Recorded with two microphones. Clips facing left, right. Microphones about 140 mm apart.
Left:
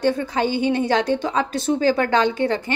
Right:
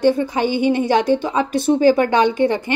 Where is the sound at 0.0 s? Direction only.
15° right (ahead or behind).